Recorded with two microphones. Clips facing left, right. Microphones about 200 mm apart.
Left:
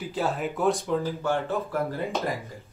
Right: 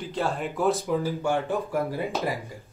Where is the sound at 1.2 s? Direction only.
15° right (ahead or behind).